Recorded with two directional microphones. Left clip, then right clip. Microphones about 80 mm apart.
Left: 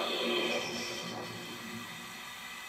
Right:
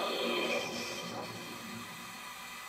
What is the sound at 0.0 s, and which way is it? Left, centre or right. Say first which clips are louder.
Music: left 1 dB; right.